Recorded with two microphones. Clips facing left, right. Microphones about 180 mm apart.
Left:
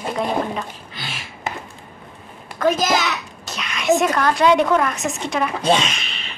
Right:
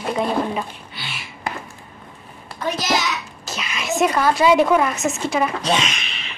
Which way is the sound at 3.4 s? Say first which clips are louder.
Right 1 dB; centre (ahead or behind).